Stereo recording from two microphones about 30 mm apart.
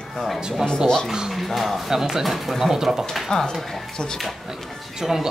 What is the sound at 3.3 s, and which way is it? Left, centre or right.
Speech, left.